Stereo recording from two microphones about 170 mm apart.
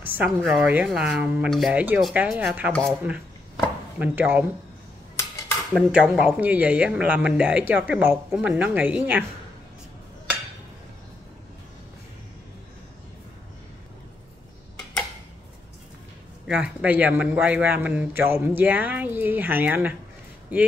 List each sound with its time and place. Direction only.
0.0 s a woman's voice: 10° right (ahead or behind)
3.5 s chop: 10° right (ahead or behind)
5.7 s a man's voice: centre (ahead or behind)
16.4 s a man's voice: 5° right (ahead or behind)